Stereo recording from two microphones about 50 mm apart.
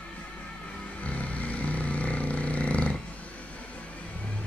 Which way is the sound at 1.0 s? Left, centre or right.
Left.